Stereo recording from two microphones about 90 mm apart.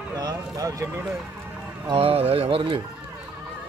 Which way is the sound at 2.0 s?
90° right.